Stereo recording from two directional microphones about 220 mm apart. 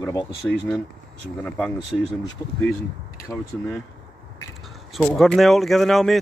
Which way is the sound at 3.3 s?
15° left (ahead or behind).